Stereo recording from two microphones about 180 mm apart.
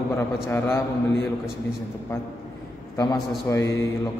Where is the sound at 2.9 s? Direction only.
20° left (ahead or behind).